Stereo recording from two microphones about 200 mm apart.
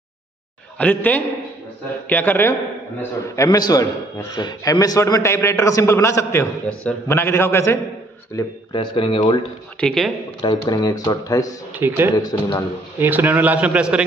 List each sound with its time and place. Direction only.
0.7 s a man's voice: 5° left (ahead or behind)
8.4 s speech: 25° left (ahead or behind)
9.8 s speech: centre (ahead or behind)
10.4 s a man's voice: 20° left (ahead or behind)
11.8 s a man's voice: 10° right (ahead or behind)
12.2 s speech: 20° left (ahead or behind)
13.0 s a man's voice: 10° right (ahead or behind)